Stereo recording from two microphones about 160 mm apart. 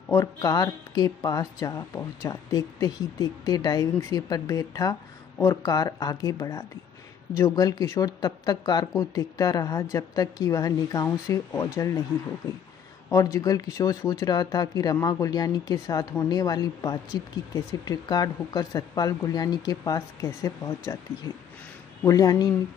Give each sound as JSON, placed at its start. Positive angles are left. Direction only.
{"t": 0.1, "sound": "a woman's voice", "side_deg": 20}
{"t": 13.1, "sound": "a woman's voice", "side_deg": 20}